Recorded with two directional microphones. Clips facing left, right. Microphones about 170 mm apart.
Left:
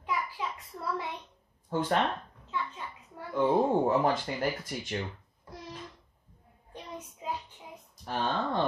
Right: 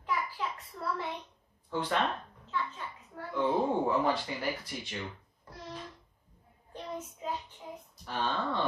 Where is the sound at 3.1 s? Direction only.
10° left (ahead or behind).